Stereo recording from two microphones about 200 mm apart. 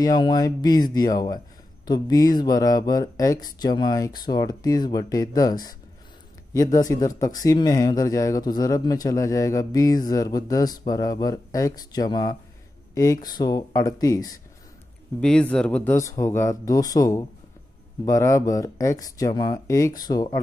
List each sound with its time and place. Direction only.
0.0 s speech: 20° left (ahead or behind)
15.1 s speech: 5° left (ahead or behind)